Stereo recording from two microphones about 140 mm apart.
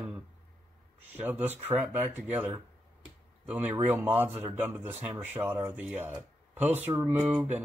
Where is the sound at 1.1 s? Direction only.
15° right (ahead or behind).